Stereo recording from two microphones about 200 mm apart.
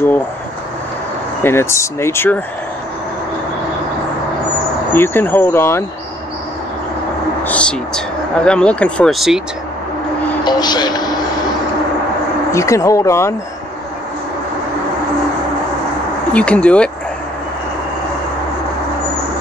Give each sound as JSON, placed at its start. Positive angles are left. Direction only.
{"t": 1.4, "sound": "speech", "side_deg": 10}
{"t": 4.9, "sound": "speech", "side_deg": 10}
{"t": 7.4, "sound": "speech", "side_deg": 5}
{"t": 10.4, "sound": "a sound", "side_deg": 20}
{"t": 12.5, "sound": "speech", "side_deg": 15}
{"t": 16.3, "sound": "speech", "side_deg": 5}